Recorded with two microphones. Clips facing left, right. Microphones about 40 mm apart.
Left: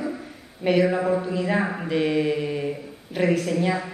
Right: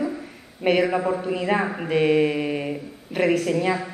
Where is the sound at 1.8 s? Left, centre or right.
Right.